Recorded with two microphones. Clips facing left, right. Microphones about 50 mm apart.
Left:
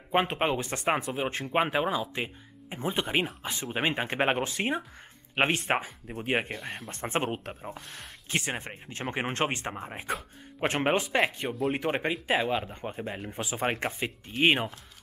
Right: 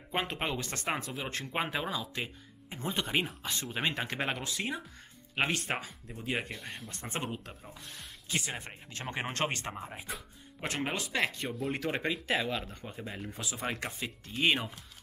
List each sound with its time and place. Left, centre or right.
0.1 s speech: left
6.5 s speech: centre
6.9 s speech: left
10.6 s speech: left
11.1 s speech: left